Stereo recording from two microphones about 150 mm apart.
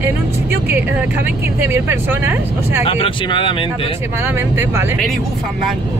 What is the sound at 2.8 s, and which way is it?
Speech, 40° left (ahead or behind).